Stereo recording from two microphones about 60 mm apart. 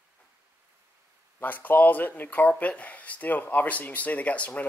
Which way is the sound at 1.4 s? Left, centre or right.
Left.